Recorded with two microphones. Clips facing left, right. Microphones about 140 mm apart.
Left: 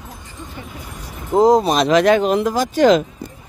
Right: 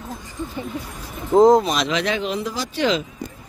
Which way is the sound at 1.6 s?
45° left (ahead or behind).